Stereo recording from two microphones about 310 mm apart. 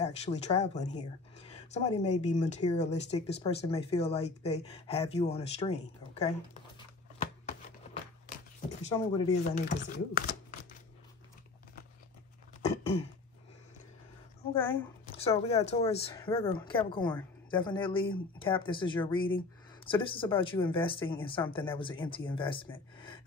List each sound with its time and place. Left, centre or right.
0.0 s speech: left
7.2 s chopping: centre
9.1 s speech: centre
12.6 s cough: centre
14.5 s speech: centre
15.0 s speech: centre